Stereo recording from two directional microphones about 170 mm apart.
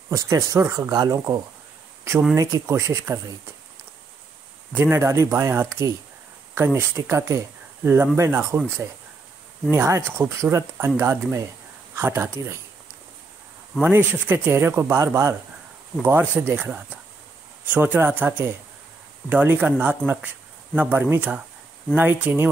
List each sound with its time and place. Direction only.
0.1 s speech: 20° right (ahead or behind)
4.7 s speech: 15° right (ahead or behind)
13.7 s speech: 10° right (ahead or behind)